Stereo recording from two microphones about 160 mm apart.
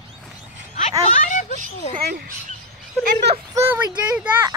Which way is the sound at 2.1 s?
70° right (ahead or behind).